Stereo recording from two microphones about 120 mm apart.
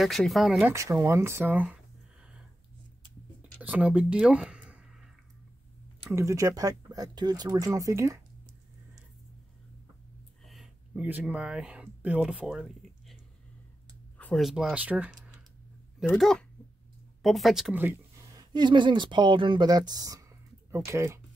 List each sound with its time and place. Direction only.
0.0 s speech: centre (ahead or behind)
0.7 s speech: 25° right (ahead or behind)
3.6 s a sound: 15° right (ahead or behind)
6.0 s speech: 25° right (ahead or behind)
10.4 s a sound: centre (ahead or behind)
11.1 s speech: 10° right (ahead or behind)
14.1 s a sound: 10° left (ahead or behind)
14.4 s speech: 5° right (ahead or behind)
16.2 s speech: 5° left (ahead or behind)
17.7 s speech: 20° right (ahead or behind)
18.2 s speech: 35° right (ahead or behind)